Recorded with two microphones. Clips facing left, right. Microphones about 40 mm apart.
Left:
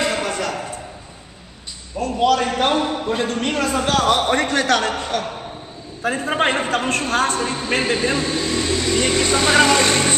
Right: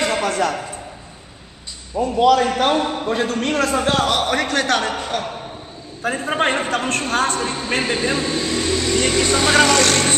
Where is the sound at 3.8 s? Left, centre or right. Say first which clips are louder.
Even; centre.